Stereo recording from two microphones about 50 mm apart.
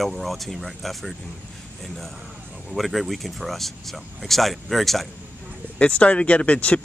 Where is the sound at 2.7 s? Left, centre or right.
Centre.